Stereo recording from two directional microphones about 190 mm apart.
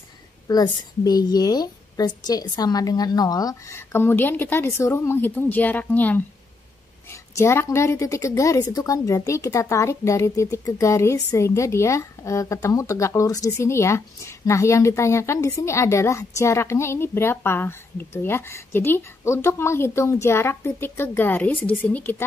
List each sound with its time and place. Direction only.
0.5 s a woman's voice: 20° left (ahead or behind)